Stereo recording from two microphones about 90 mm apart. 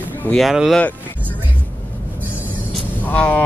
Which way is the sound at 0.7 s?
15° left (ahead or behind).